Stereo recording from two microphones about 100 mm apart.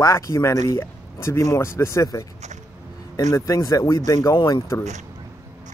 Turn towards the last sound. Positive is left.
turn(degrees=40)  # may be behind; listen again after turning